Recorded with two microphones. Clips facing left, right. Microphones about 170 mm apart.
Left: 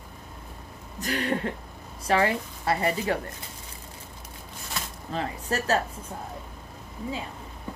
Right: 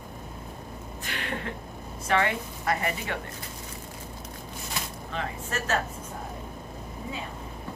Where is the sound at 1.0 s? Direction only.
40° left (ahead or behind).